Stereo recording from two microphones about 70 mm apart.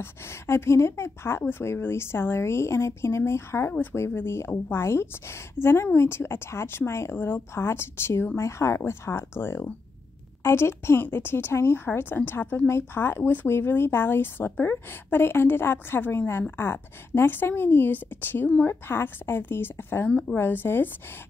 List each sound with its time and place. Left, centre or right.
0.0 s speech: left
20.1 s speech: centre
20.3 s speech: left